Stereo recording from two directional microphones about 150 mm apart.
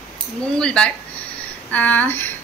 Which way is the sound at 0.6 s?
5° left (ahead or behind).